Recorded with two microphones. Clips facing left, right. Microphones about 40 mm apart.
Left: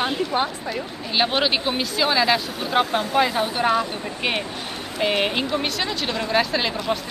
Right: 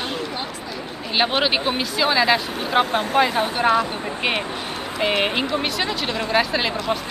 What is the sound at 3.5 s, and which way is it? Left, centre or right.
Speech, centre.